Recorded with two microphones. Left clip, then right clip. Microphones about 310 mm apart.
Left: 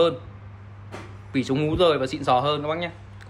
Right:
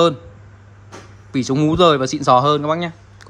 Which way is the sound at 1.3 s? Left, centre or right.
Centre.